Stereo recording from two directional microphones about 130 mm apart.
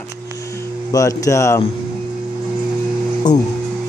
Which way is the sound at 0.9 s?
25° left (ahead or behind).